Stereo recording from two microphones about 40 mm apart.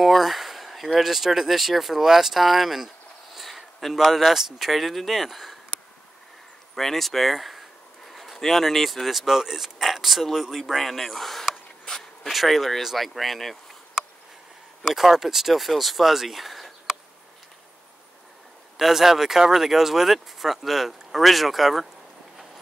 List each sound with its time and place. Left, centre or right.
0.0 s a sound: centre
0.9 s speech: centre
6.7 s speech: centre
10.7 s a sound: centre
12.2 s speech: centre
14.8 s speech: centre
18.8 s speech: centre